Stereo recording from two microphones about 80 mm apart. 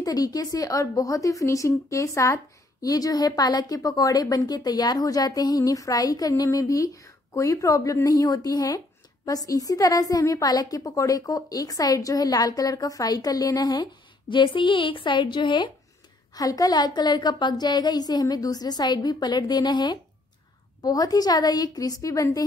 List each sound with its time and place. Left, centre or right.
0.0 s a woman's voice: left
14.3 s a woman's voice: left
16.3 s a woman's voice: left